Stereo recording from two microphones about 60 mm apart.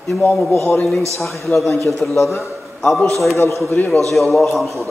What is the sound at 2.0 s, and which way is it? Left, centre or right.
Speech, left.